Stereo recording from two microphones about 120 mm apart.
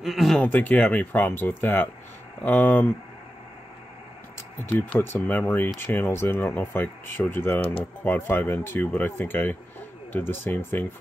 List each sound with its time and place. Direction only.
0.0 s speech: centre (ahead or behind)
0.4 s speech: 15° left (ahead or behind)
4.6 s speech: 15° left (ahead or behind)